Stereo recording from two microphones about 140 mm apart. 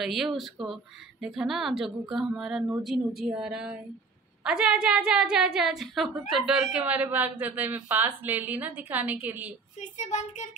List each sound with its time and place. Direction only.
0.0 s a woman's voice: centre (ahead or behind)
9.8 s speech: 60° left (ahead or behind)